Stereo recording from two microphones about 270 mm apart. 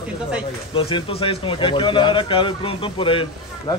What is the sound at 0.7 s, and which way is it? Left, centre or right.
Speech, centre.